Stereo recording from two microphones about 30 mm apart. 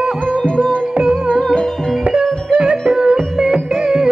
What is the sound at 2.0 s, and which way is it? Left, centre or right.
Music, right.